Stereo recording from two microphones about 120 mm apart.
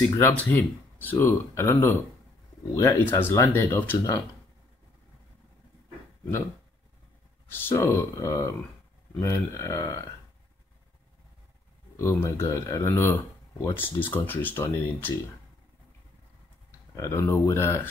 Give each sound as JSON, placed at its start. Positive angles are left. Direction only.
{"t": 0.1, "sound": "speech", "side_deg": 15}
{"t": 7.4, "sound": "speech", "side_deg": 20}
{"t": 12.0, "sound": "speech", "side_deg": 20}
{"t": 16.9, "sound": "speech", "side_deg": 25}